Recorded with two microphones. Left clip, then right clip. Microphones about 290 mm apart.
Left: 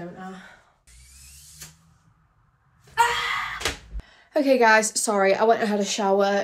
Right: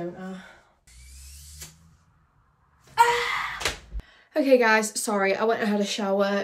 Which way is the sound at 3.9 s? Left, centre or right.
Centre.